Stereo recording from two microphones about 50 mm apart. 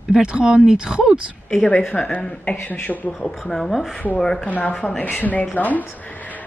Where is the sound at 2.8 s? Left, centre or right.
Left.